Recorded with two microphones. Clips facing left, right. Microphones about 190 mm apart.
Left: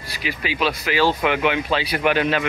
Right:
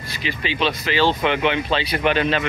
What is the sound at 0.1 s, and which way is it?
Speech, 10° left (ahead or behind).